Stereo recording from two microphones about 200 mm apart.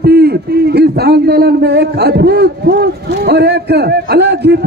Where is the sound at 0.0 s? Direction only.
50° right (ahead or behind).